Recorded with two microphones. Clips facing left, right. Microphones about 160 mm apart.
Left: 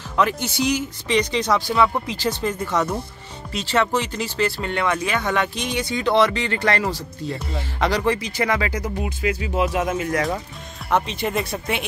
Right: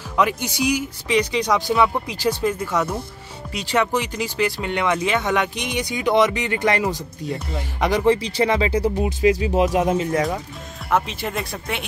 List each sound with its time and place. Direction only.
0.1 s speech: 10° right (ahead or behind)
8.2 s speech: 30° right (ahead or behind)
10.9 s speech: 5° right (ahead or behind)